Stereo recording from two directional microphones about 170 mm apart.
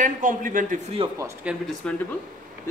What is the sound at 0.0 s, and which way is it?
Speech, 50° right (ahead or behind).